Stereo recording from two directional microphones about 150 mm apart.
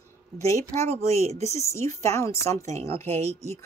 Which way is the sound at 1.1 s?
45° right (ahead or behind).